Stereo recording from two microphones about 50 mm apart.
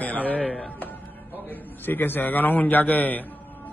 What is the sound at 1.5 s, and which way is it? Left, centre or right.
A man's voice, left.